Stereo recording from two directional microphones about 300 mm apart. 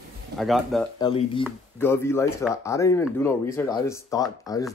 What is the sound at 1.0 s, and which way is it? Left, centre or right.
Speech, centre.